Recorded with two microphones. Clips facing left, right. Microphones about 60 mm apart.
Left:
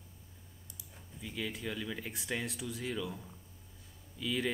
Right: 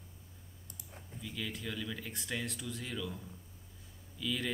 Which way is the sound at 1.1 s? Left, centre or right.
Centre.